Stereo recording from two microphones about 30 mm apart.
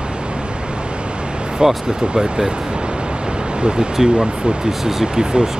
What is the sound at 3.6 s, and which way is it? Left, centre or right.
Speech, right.